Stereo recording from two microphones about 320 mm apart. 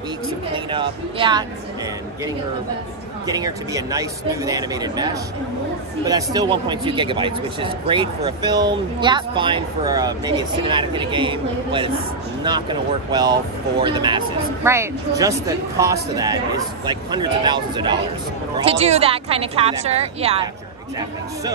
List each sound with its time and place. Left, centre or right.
0.7 s a man's voice: centre
3.3 s a man's voice: centre